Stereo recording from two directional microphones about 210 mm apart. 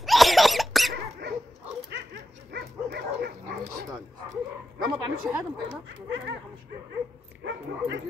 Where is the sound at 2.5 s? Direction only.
50° right (ahead or behind).